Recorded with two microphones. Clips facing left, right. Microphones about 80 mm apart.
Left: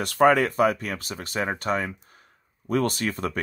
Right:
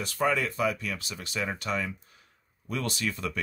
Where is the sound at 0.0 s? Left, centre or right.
Left.